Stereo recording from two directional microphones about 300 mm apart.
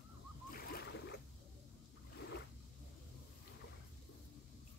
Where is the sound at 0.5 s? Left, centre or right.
Left.